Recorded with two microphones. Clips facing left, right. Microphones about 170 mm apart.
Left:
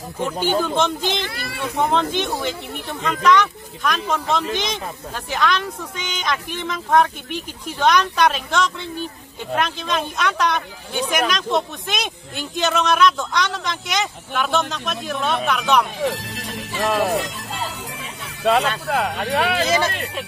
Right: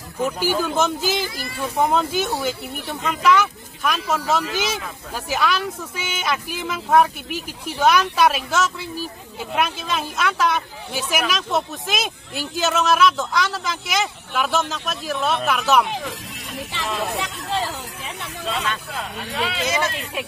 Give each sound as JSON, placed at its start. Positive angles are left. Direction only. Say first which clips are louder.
{"t": 0.2, "sound": "speech", "louder": "left 1 dB", "side_deg": -5}
{"t": 1.2, "sound": "speech", "louder": "even", "side_deg": 65}
{"t": 1.8, "sound": "speech", "louder": "even", "side_deg": -5}
{"t": 16.0, "sound": "music", "louder": "left 8 dB", "side_deg": 80}
{"t": 16.8, "sound": "speech", "louder": "left 7 dB", "side_deg": 70}
{"t": 17.2, "sound": "a sound", "louder": "right 3 dB", "side_deg": -75}
{"t": 18.4, "sound": "speech", "louder": "left 9 dB", "side_deg": 70}